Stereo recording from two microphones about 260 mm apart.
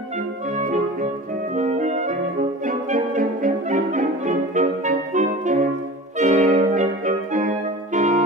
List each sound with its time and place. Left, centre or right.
1.5 s music: right